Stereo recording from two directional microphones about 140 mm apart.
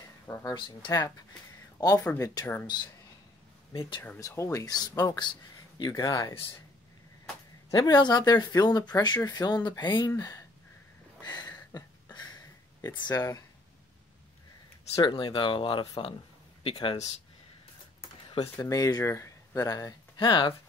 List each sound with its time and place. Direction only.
0.3 s speech: 25° left (ahead or behind)
4.0 s speech: 20° left (ahead or behind)
7.7 s speech: 30° left (ahead or behind)
11.2 s a sound: 25° left (ahead or behind)
15.0 s speech: 35° left (ahead or behind)
18.6 s speech: 25° left (ahead or behind)